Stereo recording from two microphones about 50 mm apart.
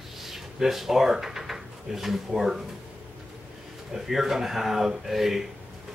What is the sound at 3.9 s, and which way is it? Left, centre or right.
Speech, centre.